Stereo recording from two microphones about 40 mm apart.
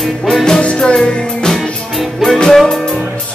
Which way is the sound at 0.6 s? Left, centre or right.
Left.